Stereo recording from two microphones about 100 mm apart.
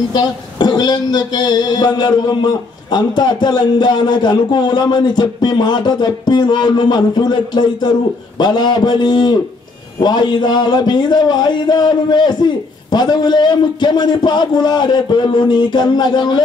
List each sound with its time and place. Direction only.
0.1 s speech: 45° left (ahead or behind)